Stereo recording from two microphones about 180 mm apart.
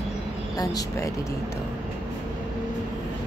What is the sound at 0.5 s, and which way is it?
Speech, 20° left (ahead or behind).